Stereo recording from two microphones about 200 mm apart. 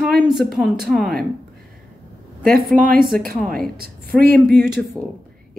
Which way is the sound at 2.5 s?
45° right (ahead or behind).